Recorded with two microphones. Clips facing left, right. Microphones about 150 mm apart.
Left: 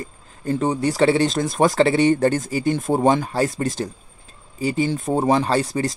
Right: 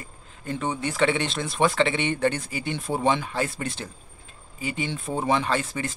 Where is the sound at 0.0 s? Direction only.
35° left (ahead or behind).